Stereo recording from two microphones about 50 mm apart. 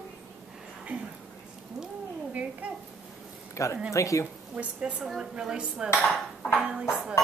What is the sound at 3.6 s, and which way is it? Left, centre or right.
Speech, left.